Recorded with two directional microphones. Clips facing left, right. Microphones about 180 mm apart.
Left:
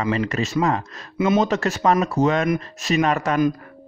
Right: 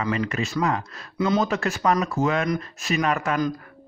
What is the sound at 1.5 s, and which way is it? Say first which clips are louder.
Speech: left 3 dB; 40° left (ahead or behind).